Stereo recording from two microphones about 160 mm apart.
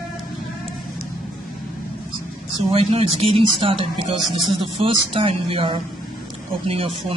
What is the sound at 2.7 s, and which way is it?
A woman's voice, 35° right (ahead or behind).